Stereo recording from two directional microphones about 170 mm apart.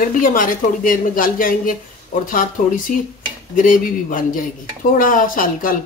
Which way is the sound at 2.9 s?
55° left (ahead or behind).